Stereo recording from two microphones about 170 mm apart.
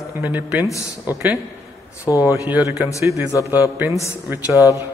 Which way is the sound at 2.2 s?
10° right (ahead or behind).